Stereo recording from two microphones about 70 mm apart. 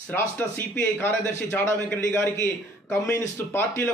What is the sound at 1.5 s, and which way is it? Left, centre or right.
Speech, left.